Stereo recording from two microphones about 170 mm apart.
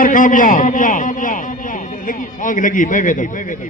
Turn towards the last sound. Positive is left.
turn(degrees=50)  # may be behind; listen again after turning